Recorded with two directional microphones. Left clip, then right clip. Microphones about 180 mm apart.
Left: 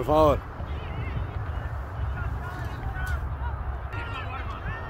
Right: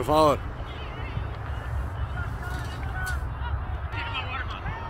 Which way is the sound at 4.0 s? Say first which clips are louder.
Right 4 dB; 50° left (ahead or behind).